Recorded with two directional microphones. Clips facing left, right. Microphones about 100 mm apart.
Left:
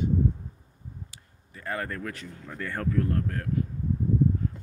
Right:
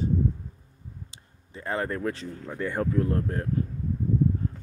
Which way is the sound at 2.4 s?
20° right (ahead or behind).